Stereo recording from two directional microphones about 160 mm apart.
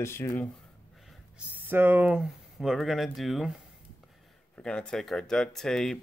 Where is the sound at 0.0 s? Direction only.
15° left (ahead or behind).